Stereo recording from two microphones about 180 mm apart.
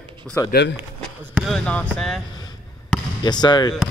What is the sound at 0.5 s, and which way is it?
Speech, 65° left (ahead or behind).